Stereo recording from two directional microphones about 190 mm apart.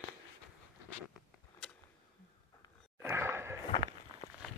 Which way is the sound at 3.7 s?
25° left (ahead or behind).